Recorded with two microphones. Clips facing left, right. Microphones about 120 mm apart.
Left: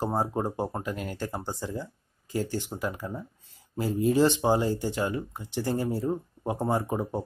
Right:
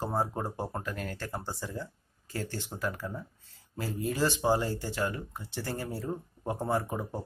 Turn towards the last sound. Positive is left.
turn(degrees=20)  # may be behind; listen again after turning